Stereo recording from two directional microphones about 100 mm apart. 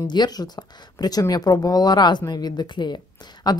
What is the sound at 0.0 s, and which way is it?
Speech, 45° left (ahead or behind).